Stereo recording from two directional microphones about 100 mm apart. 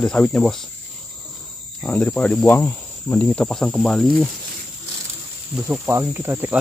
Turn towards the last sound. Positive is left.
turn(degrees=-20)  # may be behind; listen again after turning